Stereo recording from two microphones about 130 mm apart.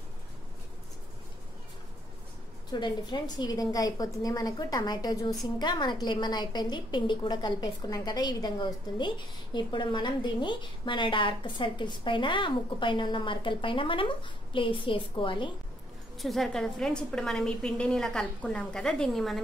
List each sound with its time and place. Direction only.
2.7 s a woman's voice: 35° left (ahead or behind)
16.2 s a woman's voice: centre (ahead or behind)